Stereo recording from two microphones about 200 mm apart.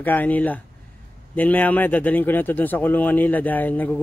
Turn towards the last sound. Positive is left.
turn(degrees=10)  # may be behind; listen again after turning